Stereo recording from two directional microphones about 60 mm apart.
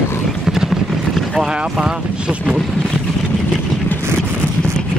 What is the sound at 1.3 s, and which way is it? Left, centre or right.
Speech, centre.